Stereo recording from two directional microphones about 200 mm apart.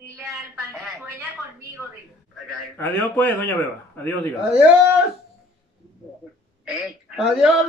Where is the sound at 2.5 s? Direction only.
10° left (ahead or behind).